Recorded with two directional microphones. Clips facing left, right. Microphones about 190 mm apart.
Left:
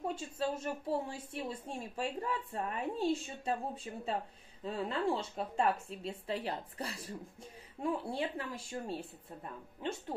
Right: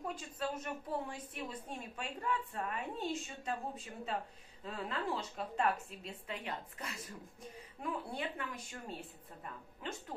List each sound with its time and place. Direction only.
0.0 s a woman's voice: 25° left (ahead or behind)